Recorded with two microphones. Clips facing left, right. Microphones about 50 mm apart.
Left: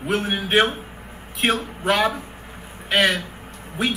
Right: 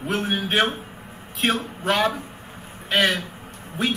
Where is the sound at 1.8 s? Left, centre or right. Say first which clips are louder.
Left 2 dB; centre.